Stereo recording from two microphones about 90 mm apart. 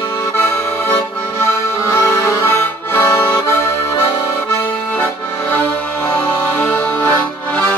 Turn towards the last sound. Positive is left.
turn(degrees=20)  # may be behind; listen again after turning